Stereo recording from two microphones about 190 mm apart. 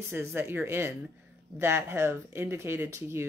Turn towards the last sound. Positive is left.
turn(degrees=-15)  # may be behind; listen again after turning